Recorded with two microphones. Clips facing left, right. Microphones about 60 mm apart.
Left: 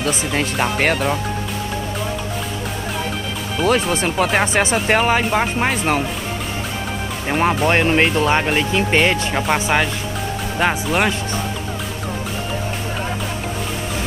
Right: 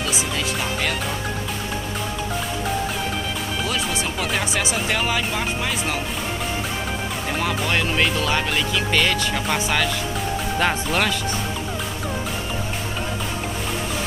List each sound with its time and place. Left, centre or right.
0.0 s speech: left
3.6 s speech: left
7.2 s speech: left
10.6 s speech: centre